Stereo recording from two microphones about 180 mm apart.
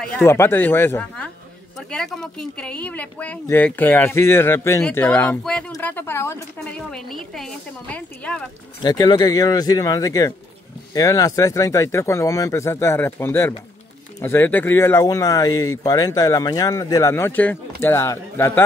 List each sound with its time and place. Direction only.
0.2 s speech: 15° left (ahead or behind)
8.8 s speech: 25° left (ahead or behind)